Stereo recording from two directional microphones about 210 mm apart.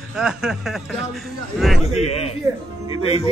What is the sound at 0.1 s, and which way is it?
Speech, 5° right (ahead or behind).